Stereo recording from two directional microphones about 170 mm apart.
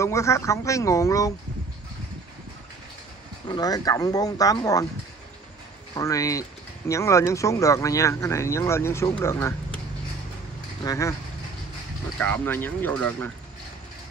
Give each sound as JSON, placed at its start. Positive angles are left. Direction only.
{"t": 0.0, "sound": "speech", "side_deg": 15}
{"t": 3.4, "sound": "speech", "side_deg": 25}
{"t": 5.9, "sound": "speech", "side_deg": 20}
{"t": 10.8, "sound": "speech", "side_deg": 20}
{"t": 12.2, "sound": "speech", "side_deg": 10}